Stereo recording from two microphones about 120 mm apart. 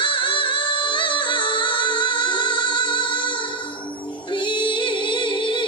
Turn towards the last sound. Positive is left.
turn(degrees=45)  # may be behind; listen again after turning